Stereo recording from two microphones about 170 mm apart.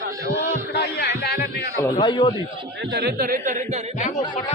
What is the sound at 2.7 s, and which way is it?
Speech, 75° right (ahead or behind).